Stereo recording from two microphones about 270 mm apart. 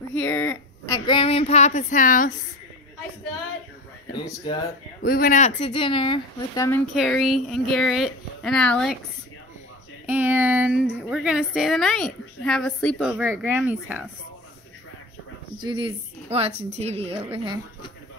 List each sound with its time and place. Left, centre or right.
0.1 s speech: centre; by 2.3 s left
5.0 s speech: left; by 6.8 s centre
6.9 s a woman's voice: centre
10.0 s a woman's voice: centre
15.6 s a woman's voice: centre